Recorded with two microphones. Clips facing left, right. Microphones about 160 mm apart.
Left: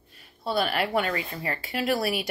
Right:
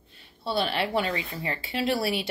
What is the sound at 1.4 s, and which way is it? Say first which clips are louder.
Speech: even; 25° right (ahead or behind).